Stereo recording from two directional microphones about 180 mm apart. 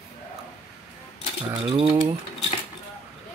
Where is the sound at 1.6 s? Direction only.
30° right (ahead or behind).